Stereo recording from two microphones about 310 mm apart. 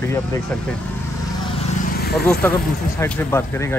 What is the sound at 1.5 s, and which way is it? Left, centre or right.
Vehicle, left.